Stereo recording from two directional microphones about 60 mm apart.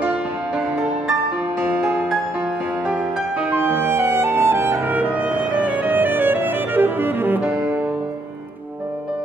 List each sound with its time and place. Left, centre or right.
1.8 s music: centre
2.9 s music: centre
3.5 s music: right